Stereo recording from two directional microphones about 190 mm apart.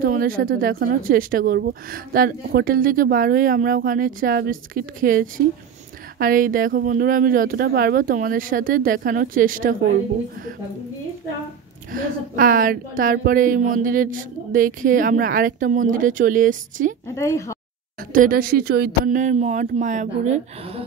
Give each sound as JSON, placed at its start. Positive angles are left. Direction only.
{"t": 0.0, "sound": "speech", "side_deg": -50}
{"t": 11.9, "sound": "speech", "side_deg": -50}
{"t": 17.1, "sound": "speech", "side_deg": 15}
{"t": 18.1, "sound": "speech", "side_deg": -50}